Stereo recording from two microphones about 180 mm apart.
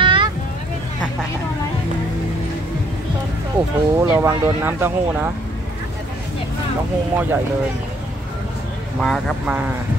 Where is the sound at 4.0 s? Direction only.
15° right (ahead or behind).